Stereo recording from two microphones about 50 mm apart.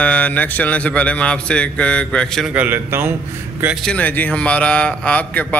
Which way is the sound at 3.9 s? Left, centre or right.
Left.